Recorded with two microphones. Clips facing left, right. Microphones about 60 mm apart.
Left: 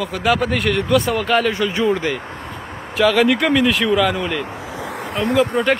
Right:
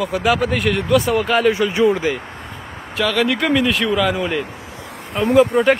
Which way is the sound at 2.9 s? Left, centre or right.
Centre.